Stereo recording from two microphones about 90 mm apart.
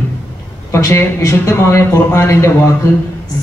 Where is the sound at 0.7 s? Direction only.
30° left (ahead or behind).